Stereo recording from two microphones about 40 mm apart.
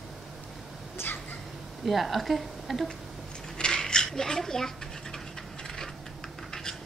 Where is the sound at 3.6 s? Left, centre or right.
Centre.